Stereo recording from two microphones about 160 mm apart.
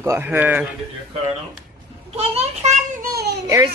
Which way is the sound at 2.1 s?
45° right (ahead or behind).